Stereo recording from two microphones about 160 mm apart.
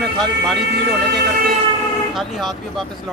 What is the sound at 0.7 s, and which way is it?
Speech, 90° right.